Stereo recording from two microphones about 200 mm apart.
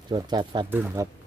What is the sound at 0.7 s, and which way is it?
Speech, 10° right (ahead or behind).